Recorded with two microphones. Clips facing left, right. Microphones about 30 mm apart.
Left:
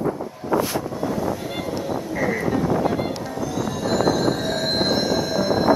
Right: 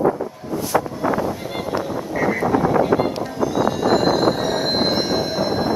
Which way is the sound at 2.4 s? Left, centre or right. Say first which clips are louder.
Right 4 dB; right.